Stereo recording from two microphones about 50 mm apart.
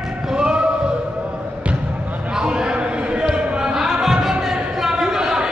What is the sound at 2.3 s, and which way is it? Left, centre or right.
Basketball bounce, centre.